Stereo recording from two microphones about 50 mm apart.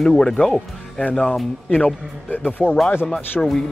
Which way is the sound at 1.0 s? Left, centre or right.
Left.